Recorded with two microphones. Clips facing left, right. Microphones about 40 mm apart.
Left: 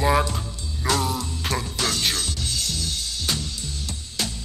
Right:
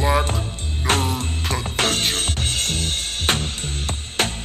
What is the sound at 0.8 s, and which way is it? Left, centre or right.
Music, right.